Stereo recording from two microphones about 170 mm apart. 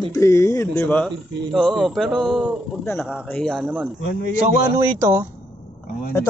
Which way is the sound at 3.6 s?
10° right (ahead or behind).